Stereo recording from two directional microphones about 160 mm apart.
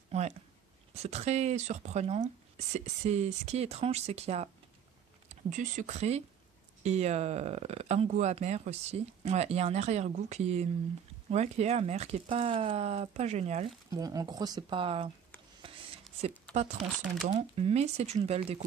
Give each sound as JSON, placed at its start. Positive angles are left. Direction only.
{"t": 0.9, "sound": "speech", "side_deg": -45}
{"t": 13.8, "sound": "speech", "side_deg": -25}
{"t": 15.6, "sound": "a sound", "side_deg": -30}
{"t": 17.4, "sound": "speech", "side_deg": -40}